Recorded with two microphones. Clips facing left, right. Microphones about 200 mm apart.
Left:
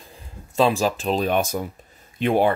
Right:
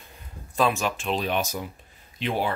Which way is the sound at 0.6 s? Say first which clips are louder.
Left 5 dB; 30° left (ahead or behind).